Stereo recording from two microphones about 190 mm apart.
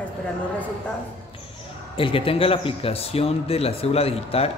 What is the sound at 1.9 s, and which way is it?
Speech, 30° left (ahead or behind).